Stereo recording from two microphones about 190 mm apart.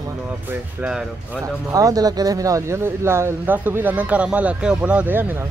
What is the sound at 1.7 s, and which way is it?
Speech, 20° right (ahead or behind).